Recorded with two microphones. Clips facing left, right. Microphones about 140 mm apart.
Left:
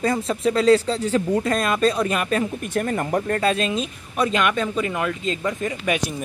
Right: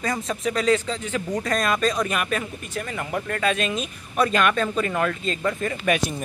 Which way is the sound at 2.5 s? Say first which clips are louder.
Left 7 dB; 55° left (ahead or behind).